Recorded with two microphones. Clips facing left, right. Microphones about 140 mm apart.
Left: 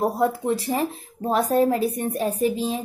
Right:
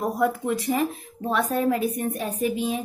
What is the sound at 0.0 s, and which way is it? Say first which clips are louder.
Speech: left 2 dB; 30° left (ahead or behind).